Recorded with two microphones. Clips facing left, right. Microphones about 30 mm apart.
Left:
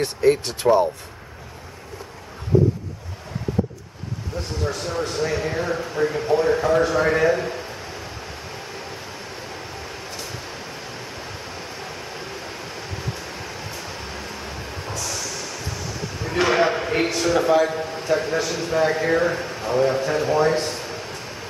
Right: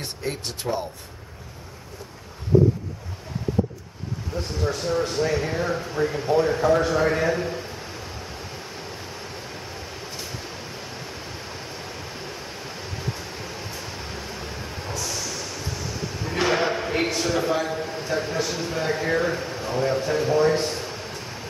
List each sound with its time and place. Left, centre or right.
0.0 s speech: left
4.3 s speech: centre
11.4 s train: centre
20.5 s a sound: centre